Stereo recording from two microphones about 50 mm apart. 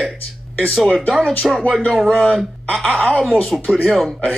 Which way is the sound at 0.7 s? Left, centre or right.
Centre.